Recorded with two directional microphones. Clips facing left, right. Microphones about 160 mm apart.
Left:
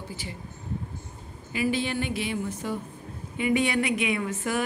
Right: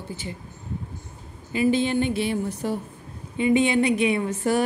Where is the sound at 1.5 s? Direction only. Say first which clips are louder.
Right 6 dB; 25° right (ahead or behind).